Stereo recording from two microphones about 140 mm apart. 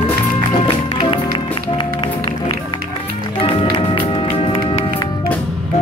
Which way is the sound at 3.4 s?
40° left (ahead or behind).